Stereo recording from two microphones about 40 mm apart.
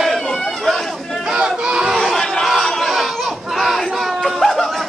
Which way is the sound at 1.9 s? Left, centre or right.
Centre.